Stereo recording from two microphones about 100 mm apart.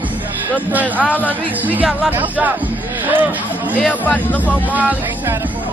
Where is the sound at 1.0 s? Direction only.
15° left (ahead or behind).